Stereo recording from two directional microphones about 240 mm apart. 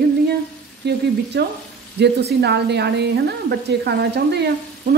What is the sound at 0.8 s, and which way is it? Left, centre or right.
Speech, right.